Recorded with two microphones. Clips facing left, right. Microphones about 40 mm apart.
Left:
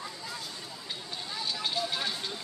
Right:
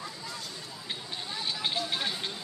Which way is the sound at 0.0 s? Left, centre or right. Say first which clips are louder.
Even; centre.